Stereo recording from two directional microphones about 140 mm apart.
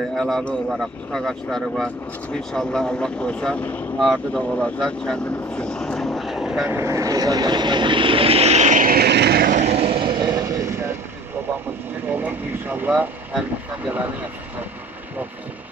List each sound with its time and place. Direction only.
0.1 s a man's voice: centre (ahead or behind)
4.0 s vehicle: 5° left (ahead or behind)
6.7 s vehicle: 20° right (ahead or behind); by 9.6 s 90° right
9.6 s vehicle: 50° right (ahead or behind); by 11.0 s 20° right (ahead or behind)
12.1 s speech: 10° right (ahead or behind)